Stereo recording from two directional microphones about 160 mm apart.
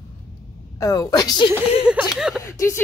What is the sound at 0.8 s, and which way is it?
Speech, 20° left (ahead or behind).